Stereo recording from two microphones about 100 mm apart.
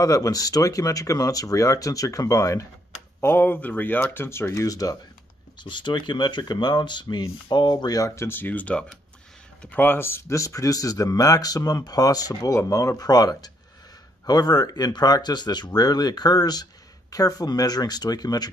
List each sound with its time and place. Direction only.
0.0 s speech: 35° left (ahead or behind)
3.2 s speech: 20° left (ahead or behind)
5.6 s speech: 50° left (ahead or behind)
8.2 s speech: 20° left (ahead or behind); by 18.5 s 40° left (ahead or behind)